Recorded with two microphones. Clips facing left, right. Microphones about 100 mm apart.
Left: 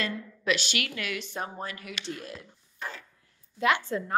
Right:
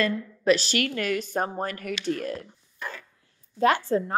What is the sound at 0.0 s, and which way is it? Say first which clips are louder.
A woman's voice: right 7 dB; 40° right (ahead or behind).